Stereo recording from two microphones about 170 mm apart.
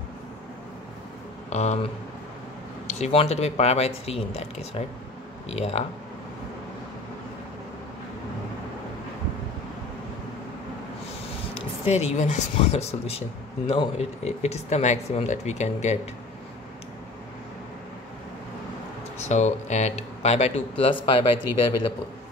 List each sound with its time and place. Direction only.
1.5 s speech: 40° left (ahead or behind)
2.9 s speech: 35° left (ahead or behind)
11.5 s speech: 40° left (ahead or behind)
19.2 s speech: 45° left (ahead or behind)